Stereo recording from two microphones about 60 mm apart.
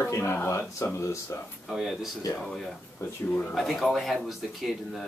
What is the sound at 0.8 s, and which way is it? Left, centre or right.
Speech, left.